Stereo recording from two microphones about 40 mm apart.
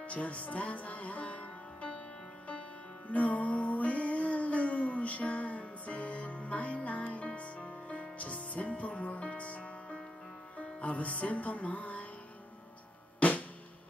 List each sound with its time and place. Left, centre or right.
0.0 s music: left
3.1 s music: left